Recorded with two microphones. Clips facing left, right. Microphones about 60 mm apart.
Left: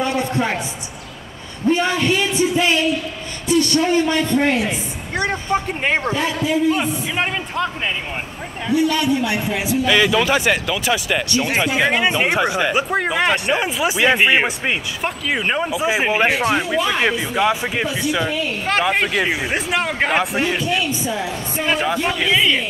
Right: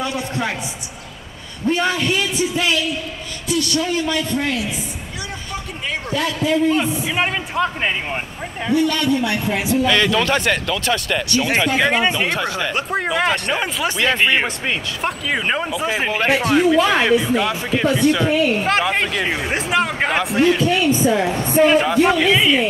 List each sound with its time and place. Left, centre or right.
0.0 s a man's voice: left
1.6 s a man's voice: left
6.5 s speech: centre
7.2 s a man's voice: centre
8.7 s speech: centre
9.5 s speech: centre
12.2 s speech: centre
15.0 s speech: centre
18.0 s a woman's voice: right
18.7 s speech: centre
20.3 s speech: centre
20.6 s a woman's voice: right
21.6 s speech: centre